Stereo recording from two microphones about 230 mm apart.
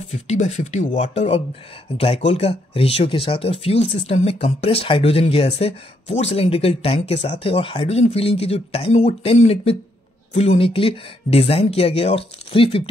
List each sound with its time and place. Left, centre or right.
0.1 s speech: left